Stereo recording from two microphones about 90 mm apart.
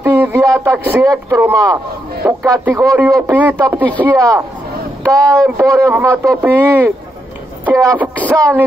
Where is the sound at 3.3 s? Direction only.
20° right (ahead or behind).